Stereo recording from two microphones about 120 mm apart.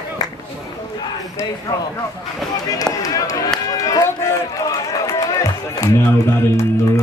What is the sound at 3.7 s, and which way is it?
Run, 30° left (ahead or behind).